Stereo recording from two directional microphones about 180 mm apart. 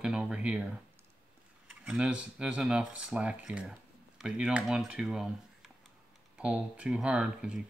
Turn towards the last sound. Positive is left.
turn(degrees=-5)  # may be behind; listen again after turning